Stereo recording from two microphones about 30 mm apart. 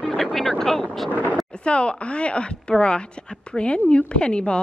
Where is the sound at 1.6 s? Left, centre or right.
Left.